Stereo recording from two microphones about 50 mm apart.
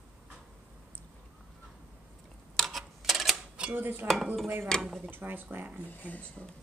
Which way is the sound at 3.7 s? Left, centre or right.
Right.